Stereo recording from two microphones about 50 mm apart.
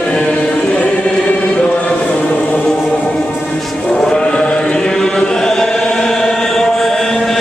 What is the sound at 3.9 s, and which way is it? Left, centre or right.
Chant, centre.